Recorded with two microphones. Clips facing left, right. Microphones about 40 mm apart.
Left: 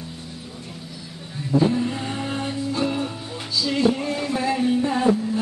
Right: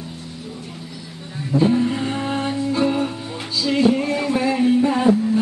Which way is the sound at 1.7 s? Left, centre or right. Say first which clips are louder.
Right 5 dB; centre.